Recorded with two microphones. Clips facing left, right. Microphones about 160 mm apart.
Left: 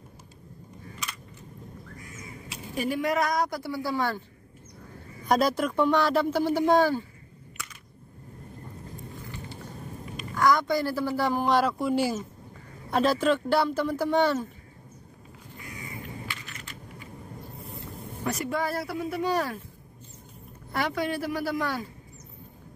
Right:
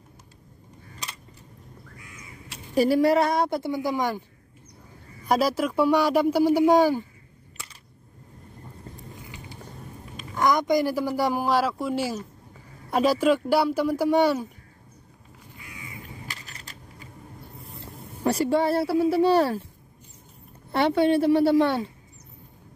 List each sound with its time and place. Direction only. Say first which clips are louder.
1.0 s a sound: even; 35° right (ahead or behind)
2.7 s a woman's voice: right 8 dB; 35° right (ahead or behind); by 4.2 s 15° right (ahead or behind)
5.2 s a man's voice: right 1 dB; 5° right (ahead or behind)
10.3 s a man's voice: right 2 dB; 20° right (ahead or behind)
15.6 s crow: left 2 dB; 40° left (ahead or behind)
16.3 s vehicle: left 2 dB; 35° right (ahead or behind)
18.2 s speech: right 7 dB; 30° right (ahead or behind)
20.7 s a woman's voice: right 8 dB; 30° right (ahead or behind)